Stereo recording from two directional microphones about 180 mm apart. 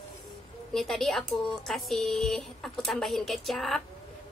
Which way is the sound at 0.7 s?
Centre (ahead or behind).